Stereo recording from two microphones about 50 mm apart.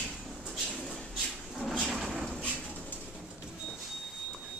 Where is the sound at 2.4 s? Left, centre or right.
Left.